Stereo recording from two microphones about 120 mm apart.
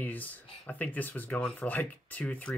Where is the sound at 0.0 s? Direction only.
15° left (ahead or behind).